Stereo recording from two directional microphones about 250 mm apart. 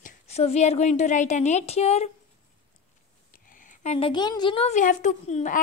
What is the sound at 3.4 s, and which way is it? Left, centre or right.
A woman's voice, left.